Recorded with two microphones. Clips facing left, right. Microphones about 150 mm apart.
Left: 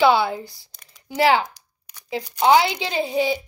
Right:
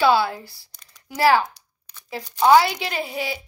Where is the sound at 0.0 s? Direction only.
20° left (ahead or behind).